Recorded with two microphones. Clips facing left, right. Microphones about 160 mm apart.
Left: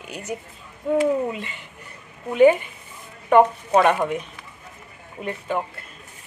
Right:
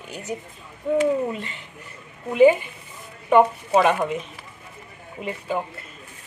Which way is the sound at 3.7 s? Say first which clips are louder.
Left 1 dB; centre (ahead or behind).